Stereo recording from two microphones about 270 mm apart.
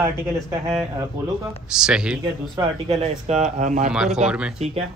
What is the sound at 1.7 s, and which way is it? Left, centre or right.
Speech, centre.